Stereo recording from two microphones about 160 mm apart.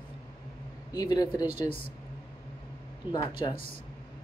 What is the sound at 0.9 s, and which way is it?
Speech, 25° left (ahead or behind).